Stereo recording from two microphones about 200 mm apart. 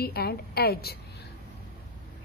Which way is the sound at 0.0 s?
50° left (ahead or behind).